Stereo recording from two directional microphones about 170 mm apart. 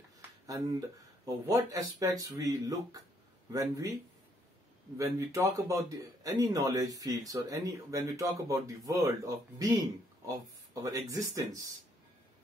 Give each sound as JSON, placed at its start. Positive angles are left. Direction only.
{"t": 0.5, "sound": "speech", "side_deg": -20}
{"t": 4.9, "sound": "speech", "side_deg": -20}